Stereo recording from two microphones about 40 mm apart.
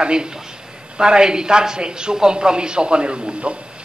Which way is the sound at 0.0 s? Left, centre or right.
Right.